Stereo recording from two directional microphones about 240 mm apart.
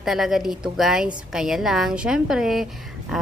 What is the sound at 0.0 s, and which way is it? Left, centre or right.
A woman's voice, centre.